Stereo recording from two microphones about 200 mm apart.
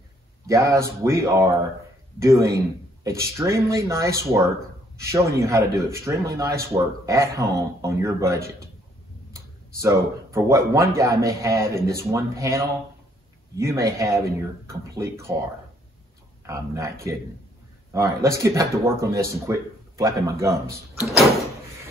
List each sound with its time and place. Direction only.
0.5 s a man's voice: 15° right (ahead or behind)
16.4 s a man's voice: 15° right (ahead or behind)
17.9 s a man's voice: 15° right (ahead or behind)